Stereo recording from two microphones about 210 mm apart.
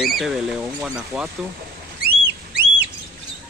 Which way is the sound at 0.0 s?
Centre (ahead or behind).